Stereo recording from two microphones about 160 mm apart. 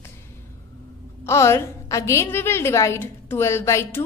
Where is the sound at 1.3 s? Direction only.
15° left (ahead or behind).